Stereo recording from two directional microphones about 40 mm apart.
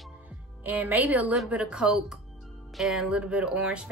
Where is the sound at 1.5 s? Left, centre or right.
Right.